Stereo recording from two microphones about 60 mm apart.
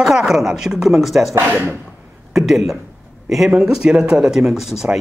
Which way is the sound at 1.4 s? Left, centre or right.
Right.